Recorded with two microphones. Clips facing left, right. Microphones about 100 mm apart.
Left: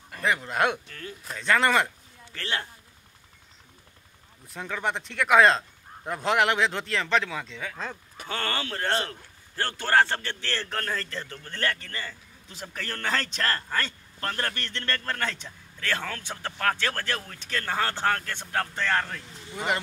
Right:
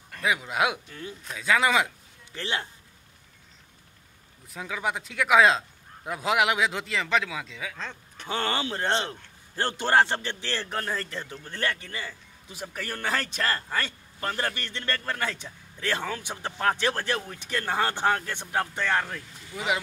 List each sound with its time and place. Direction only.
0.1 s speech: 5° right (ahead or behind)
2.3 s a man's voice: 15° right (ahead or behind)
4.5 s speech: 5° right (ahead or behind)
8.3 s a man's voice: 20° right (ahead or behind)